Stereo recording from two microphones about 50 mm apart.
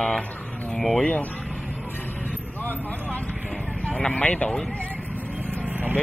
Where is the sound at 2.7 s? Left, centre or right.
Left.